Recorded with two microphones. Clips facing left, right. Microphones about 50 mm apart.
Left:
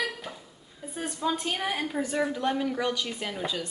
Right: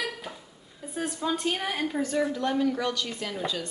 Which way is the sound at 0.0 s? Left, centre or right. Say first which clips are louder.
Left 1 dB; centre.